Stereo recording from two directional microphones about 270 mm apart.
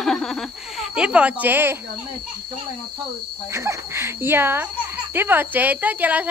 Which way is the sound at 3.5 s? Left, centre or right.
Centre.